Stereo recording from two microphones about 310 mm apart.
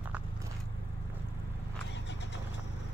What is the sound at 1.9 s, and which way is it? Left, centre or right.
Vehicle, left.